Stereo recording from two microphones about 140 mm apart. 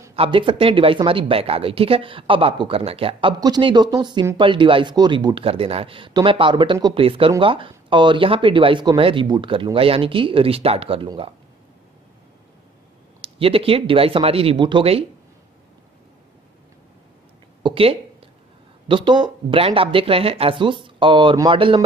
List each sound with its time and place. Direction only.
0.1 s speech: 40° right (ahead or behind)
13.2 s speech: 40° right (ahead or behind)
17.6 s a sound: 40° right (ahead or behind)
18.9 s speech: 35° right (ahead or behind)